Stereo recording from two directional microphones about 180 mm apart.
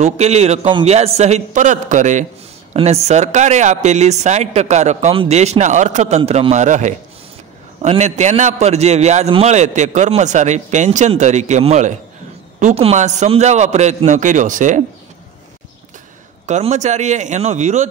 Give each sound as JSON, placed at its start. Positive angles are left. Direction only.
{"t": 0.0, "sound": "speech", "side_deg": -35}
{"t": 16.4, "sound": "speech", "side_deg": -40}